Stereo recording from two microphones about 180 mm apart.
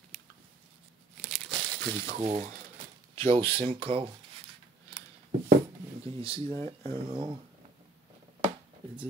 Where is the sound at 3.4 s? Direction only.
30° right (ahead or behind).